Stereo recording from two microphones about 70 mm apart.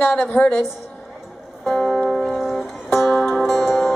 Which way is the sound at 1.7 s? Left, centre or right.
Centre.